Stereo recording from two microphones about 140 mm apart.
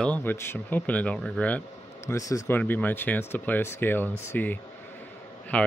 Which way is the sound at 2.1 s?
25° left (ahead or behind).